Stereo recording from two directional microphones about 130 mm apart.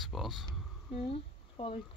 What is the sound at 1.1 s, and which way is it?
Speech, 45° left (ahead or behind).